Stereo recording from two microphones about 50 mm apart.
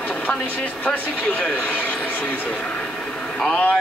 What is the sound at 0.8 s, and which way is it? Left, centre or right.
Speech, left.